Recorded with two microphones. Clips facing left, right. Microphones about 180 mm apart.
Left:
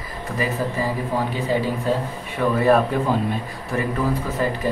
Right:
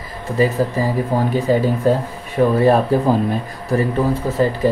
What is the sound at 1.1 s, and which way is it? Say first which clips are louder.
Speech: right 6 dB; 40° right (ahead or behind).